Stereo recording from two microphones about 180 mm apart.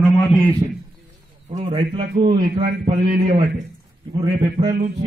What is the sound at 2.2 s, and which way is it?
Speech, 50° right (ahead or behind).